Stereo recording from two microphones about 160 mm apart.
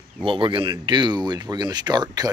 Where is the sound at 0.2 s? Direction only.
35° right (ahead or behind).